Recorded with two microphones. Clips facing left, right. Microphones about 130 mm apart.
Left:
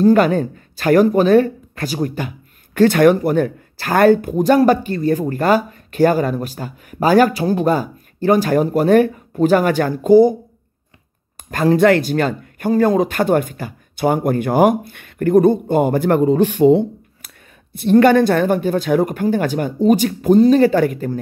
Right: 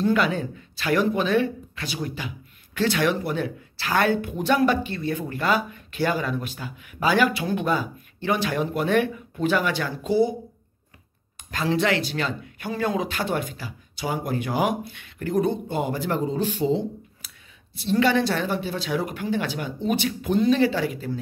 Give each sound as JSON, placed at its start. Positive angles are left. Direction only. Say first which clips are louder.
{"t": 0.0, "sound": "speech", "louder": "left 9 dB", "side_deg": 45}
{"t": 11.5, "sound": "speech", "louder": "left 10 dB", "side_deg": 50}